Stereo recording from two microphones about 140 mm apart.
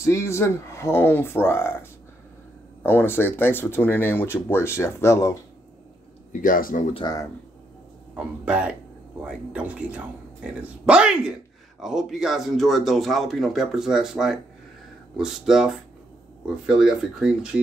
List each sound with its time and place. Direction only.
0.0 s speech: 20° left (ahead or behind)
6.3 s speech: 75° left (ahead or behind)
8.5 s speech: 10° right (ahead or behind)